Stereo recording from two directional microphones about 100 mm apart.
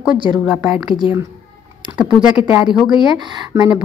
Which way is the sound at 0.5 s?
5° right (ahead or behind).